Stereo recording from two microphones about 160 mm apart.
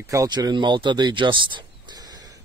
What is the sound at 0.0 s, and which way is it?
Speech, 20° right (ahead or behind).